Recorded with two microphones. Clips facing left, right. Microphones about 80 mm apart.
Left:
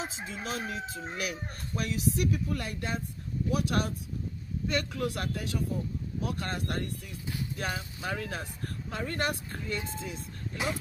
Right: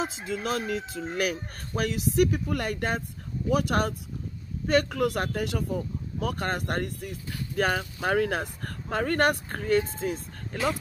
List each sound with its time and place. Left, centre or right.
0.3 s speech: right
6.2 s speech: right